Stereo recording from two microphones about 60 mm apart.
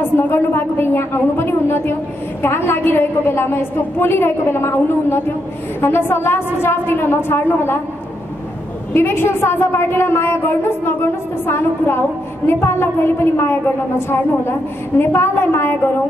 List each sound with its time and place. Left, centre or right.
0.3 s a woman's voice: left
8.9 s a woman's voice: left